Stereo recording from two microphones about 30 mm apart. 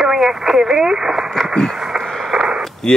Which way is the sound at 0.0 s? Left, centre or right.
Centre.